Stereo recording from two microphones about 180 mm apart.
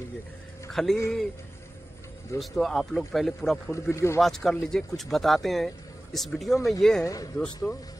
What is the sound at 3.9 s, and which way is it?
Speech, 15° left (ahead or behind).